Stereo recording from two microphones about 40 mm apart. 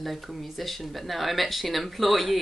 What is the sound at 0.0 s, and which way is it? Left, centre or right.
A woman's voice, centre.